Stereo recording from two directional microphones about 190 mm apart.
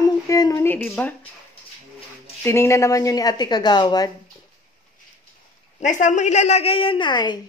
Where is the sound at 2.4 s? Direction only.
15° left (ahead or behind).